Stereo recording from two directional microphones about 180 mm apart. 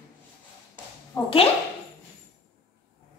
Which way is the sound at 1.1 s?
15° left (ahead or behind).